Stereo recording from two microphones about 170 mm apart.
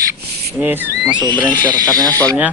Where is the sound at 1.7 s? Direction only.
20° right (ahead or behind).